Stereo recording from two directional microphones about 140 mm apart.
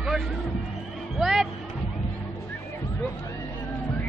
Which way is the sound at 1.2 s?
Centre (ahead or behind).